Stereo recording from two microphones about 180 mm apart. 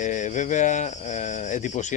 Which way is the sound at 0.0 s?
45° left (ahead or behind).